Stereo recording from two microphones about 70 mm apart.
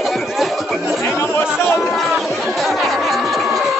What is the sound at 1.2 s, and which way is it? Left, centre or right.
Chatter, left.